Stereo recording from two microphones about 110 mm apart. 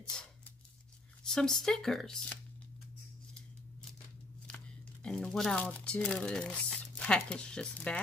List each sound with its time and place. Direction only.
0.0 s a sound: 5° left (ahead or behind)
1.2 s speech: 5° left (ahead or behind)
5.0 s speech: 5° left (ahead or behind)